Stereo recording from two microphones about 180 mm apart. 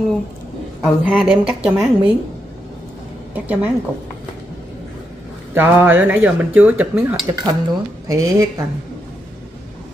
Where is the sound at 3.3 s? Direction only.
10° right (ahead or behind).